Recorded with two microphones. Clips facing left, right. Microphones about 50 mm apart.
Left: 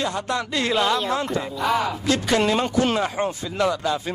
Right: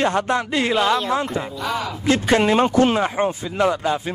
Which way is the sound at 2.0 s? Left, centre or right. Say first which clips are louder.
Right 5 dB; right.